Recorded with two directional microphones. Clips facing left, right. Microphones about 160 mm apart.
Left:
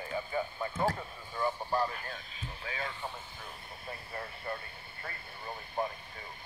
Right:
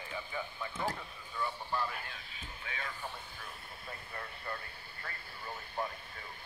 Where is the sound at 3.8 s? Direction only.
25° left (ahead or behind).